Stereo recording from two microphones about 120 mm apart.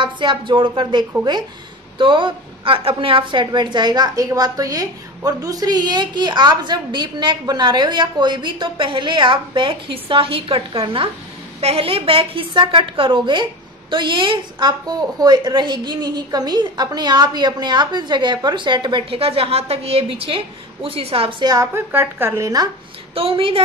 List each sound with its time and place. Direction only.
0.0 s a woman's voice: 45° right (ahead or behind)
21.7 s speech: 15° right (ahead or behind)
23.1 s a woman's voice: 50° right (ahead or behind)